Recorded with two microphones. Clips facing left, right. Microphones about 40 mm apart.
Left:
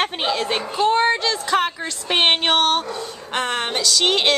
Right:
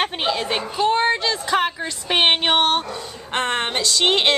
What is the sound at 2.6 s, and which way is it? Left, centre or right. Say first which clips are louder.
Speech: even; right.